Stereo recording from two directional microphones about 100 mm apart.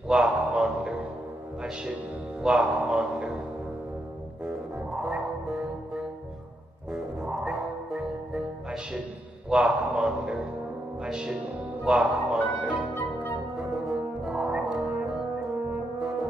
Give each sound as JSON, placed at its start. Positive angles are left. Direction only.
{"t": 0.1, "sound": "a sound", "side_deg": -5}
{"t": 2.4, "sound": "speech", "side_deg": -10}
{"t": 5.0, "sound": "music", "side_deg": 0}
{"t": 9.5, "sound": "speech", "side_deg": -5}
{"t": 11.1, "sound": "music", "side_deg": -5}
{"t": 11.8, "sound": "speech", "side_deg": -5}
{"t": 12.9, "sound": "music", "side_deg": 20}
{"t": 13.6, "sound": "brass instrument", "side_deg": 0}